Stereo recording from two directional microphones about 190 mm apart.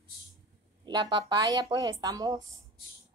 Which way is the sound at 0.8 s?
25° right (ahead or behind).